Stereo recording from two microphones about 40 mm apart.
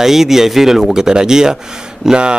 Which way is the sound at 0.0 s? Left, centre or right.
Centre.